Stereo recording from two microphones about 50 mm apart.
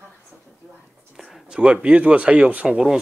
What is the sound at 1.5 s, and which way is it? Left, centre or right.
Speech, right.